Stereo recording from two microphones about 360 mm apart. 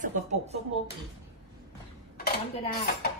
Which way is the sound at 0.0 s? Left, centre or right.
Right.